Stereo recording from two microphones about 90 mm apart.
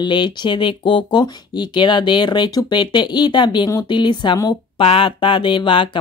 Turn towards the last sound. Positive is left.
turn(degrees=70)  # may be behind; listen again after turning